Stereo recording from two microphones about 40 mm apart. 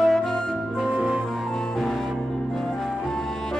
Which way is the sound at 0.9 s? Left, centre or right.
Right.